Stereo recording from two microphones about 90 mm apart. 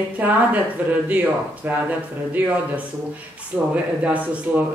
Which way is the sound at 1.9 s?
15° right (ahead or behind).